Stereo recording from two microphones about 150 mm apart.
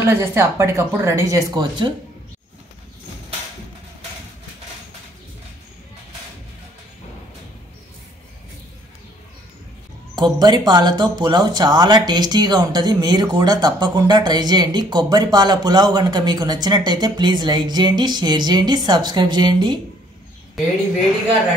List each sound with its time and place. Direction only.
0.0 s speech: 15° right (ahead or behind)
10.1 s speech: 30° right (ahead or behind)